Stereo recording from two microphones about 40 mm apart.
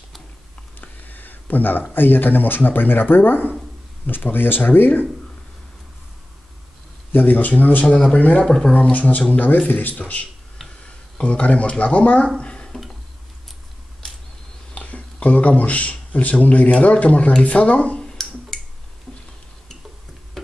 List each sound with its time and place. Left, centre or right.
0.7 s speech: left
7.1 s speech: left
7.8 s speech: left
10.6 s tick: centre
11.2 s speech: left
12.4 s a sound: left
14.7 s speech: left
18.2 s finger snapping: centre
20.4 s a sound: centre